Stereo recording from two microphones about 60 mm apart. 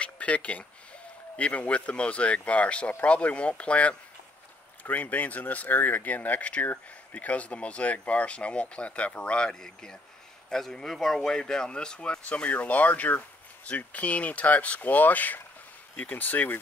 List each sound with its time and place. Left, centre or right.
0.0 s a sound: left
1.3 s speech: left
12.4 s speech: left